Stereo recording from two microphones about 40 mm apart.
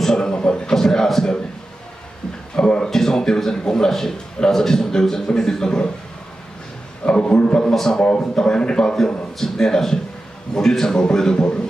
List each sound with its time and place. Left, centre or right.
0.0 s a sound: centre
2.5 s a man's voice: centre
7.1 s a man's voice: left
7.7 s a man's voice: centre